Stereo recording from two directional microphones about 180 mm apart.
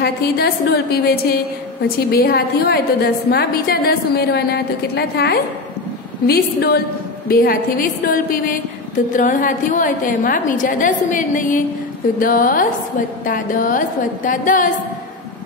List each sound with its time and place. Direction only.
0.0 s a woman's voice: 60° left (ahead or behind)